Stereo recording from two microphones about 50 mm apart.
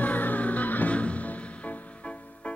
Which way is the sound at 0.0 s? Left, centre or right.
Left.